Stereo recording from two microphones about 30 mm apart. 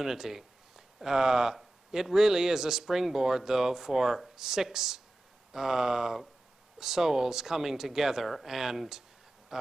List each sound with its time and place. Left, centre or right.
0.0 s speech: centre